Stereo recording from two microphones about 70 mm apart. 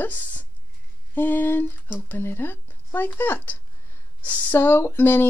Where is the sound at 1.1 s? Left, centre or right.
Left.